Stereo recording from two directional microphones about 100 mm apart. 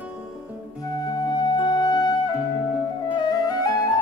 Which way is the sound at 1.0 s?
40° left (ahead or behind).